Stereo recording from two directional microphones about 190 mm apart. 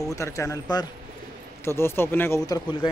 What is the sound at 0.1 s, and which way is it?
Speech, 15° left (ahead or behind).